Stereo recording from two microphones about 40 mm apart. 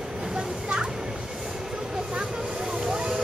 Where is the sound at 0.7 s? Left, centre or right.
Centre.